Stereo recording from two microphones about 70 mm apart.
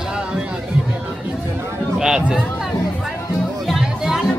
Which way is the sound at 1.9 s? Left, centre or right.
Centre.